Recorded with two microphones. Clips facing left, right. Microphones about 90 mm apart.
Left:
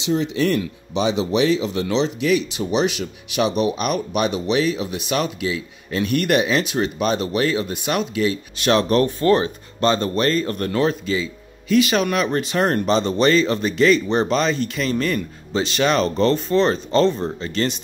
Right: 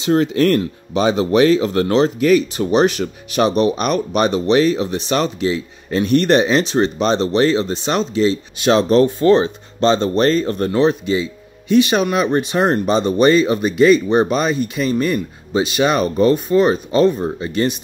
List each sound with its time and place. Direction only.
0.0 s speech: 50° right (ahead or behind); by 10.4 s 35° right (ahead or behind)
10.4 s speech: 20° right (ahead or behind)